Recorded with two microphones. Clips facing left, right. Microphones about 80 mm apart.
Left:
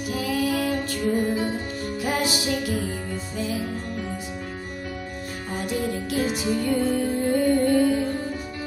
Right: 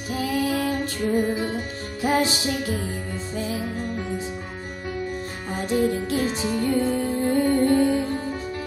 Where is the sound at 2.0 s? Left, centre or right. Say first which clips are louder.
Right 4 dB; right.